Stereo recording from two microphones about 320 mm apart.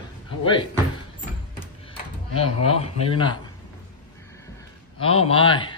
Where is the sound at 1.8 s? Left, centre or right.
Centre.